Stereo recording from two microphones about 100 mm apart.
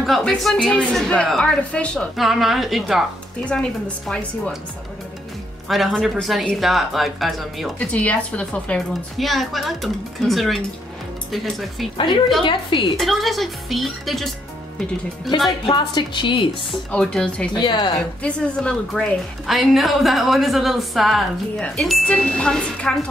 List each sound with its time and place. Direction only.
0.0 s a woman's voice: centre (ahead or behind)
2.1 s a woman's voice: centre (ahead or behind)
3.4 s a woman's voice: 10° left (ahead or behind)
5.7 s a woman's voice: centre (ahead or behind)
7.8 s a woman's voice: 15° left (ahead or behind)
9.2 s a woman's voice: centre (ahead or behind)
12.4 s a woman's voice: 55° left (ahead or behind)
12.9 s a woman's voice: centre (ahead or behind)
15.6 s a woman's voice: 50° left (ahead or behind)
16.9 s a woman's voice: 10° left (ahead or behind)
17.6 s a woman's voice: 50° left (ahead or behind)
18.2 s a woman's voice: 10° left (ahead or behind)